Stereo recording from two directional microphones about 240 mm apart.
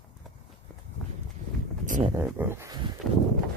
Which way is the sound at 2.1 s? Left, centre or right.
Centre.